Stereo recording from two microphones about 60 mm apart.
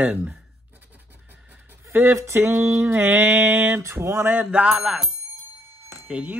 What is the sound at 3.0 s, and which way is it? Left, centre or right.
Mantra, right.